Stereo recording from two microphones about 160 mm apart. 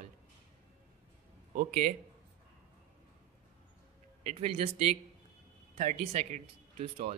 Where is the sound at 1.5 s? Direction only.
50° right (ahead or behind).